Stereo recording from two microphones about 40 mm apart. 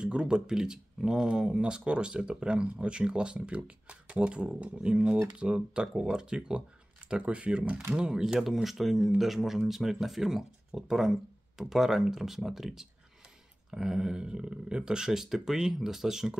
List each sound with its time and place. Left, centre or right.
0.0 s speech: right
8.2 s speech: centre